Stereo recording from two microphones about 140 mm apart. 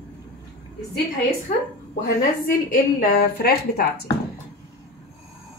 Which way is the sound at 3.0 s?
90° left.